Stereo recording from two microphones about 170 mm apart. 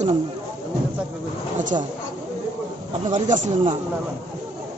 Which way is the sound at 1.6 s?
45° right (ahead or behind).